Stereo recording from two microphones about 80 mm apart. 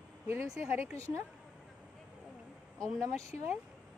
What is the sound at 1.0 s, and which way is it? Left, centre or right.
Speech, right.